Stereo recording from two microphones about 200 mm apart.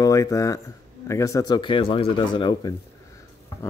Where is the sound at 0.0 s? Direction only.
15° left (ahead or behind).